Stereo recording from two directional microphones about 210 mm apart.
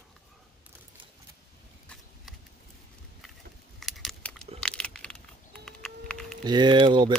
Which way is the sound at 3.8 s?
Centre (ahead or behind).